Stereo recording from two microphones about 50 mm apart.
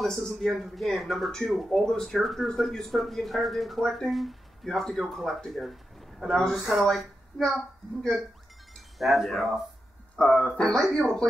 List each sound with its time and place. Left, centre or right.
0.0 s a woman's voice: centre
8.9 s speech: centre
10.2 s speech: left
10.6 s speech: centre